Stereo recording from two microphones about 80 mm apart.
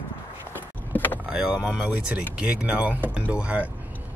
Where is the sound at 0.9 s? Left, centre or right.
Left.